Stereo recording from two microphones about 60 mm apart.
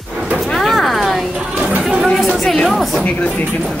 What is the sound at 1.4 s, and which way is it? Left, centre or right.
Chatter, centre.